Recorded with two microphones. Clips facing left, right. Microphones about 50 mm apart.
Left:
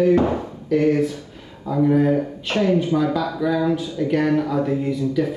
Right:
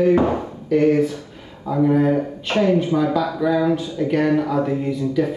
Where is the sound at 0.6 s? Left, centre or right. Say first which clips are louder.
Right 2 dB; centre.